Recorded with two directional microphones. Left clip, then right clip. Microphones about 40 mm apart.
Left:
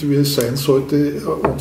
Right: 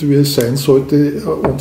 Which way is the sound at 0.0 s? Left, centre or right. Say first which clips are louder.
Right 4 dB; right.